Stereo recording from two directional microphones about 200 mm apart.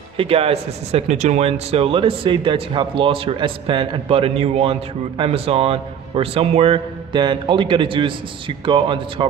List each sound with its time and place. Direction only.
0.2 s speech: 30° right (ahead or behind)